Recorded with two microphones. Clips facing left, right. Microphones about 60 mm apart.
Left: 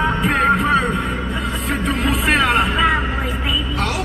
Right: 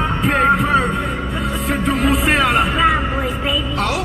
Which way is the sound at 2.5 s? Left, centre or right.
Centre.